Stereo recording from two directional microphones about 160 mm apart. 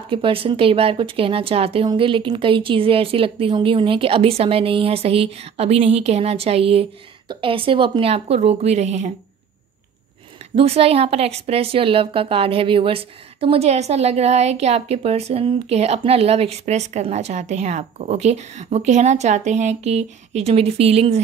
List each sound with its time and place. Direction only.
0.1 s a woman's voice: 35° right (ahead or behind)
10.5 s a woman's voice: 40° right (ahead or behind)